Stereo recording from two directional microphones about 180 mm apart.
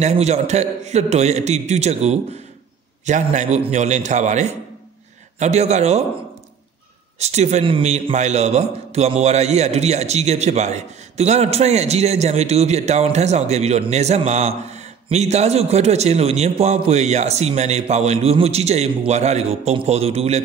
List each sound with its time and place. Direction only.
0.0 s a man's voice: 40° right (ahead or behind)
7.2 s a man's voice: 35° right (ahead or behind)